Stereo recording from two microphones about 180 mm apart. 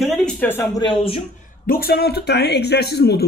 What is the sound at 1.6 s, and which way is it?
Speech, 55° left (ahead or behind).